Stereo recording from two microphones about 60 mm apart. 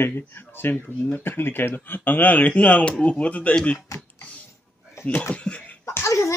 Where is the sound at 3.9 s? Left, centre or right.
Left.